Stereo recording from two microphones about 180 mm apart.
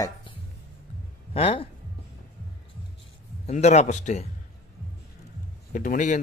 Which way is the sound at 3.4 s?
40° left (ahead or behind).